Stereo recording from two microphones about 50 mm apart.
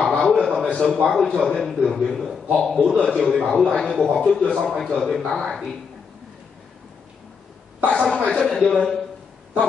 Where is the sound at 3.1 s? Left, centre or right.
Centre.